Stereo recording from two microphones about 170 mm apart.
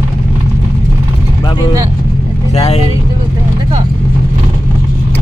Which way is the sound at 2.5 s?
35° left (ahead or behind).